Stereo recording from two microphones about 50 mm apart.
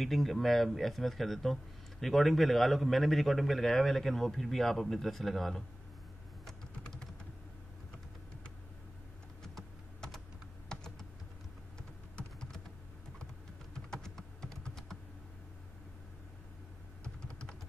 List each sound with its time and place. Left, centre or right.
0.0 s speech: centre
6.4 s typing: centre
9.4 s typing: centre
10.7 s computer keyboard: centre
13.7 s typing: centre
17.0 s typing: left